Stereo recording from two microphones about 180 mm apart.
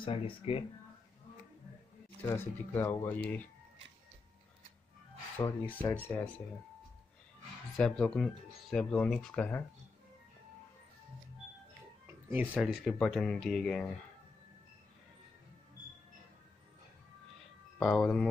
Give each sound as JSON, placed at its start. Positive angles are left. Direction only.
{"t": 0.0, "sound": "speech", "side_deg": 30}
{"t": 2.2, "sound": "speech", "side_deg": 10}
{"t": 5.7, "sound": "speech", "side_deg": 10}
{"t": 7.8, "sound": "speech", "side_deg": 5}
{"t": 12.3, "sound": "speech", "side_deg": -5}
{"t": 17.7, "sound": "speech", "side_deg": 0}